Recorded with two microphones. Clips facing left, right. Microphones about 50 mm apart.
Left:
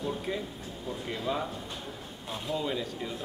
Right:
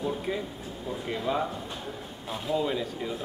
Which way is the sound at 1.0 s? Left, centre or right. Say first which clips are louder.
Right 4 dB; centre.